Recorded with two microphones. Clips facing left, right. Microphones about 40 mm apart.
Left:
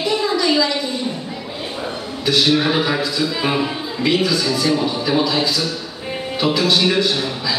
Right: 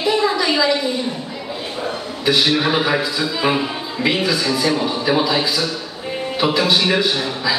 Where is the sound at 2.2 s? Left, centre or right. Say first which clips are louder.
Even; centre.